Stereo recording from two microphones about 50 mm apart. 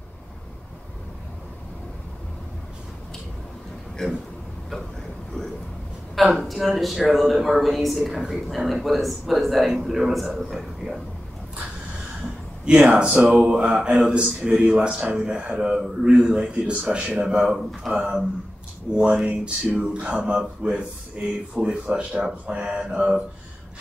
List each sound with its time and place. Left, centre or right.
4.0 s speech: centre
6.1 s a man's voice: centre
12.6 s speech: centre
17.3 s a man's voice: centre; by 20.3 s right
20.6 s a man's voice: centre